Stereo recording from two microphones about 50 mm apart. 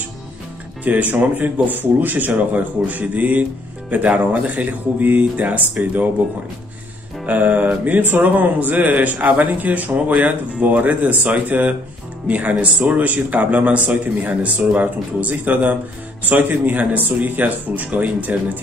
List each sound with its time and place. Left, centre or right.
0.8 s speech: right
7.2 s speech: right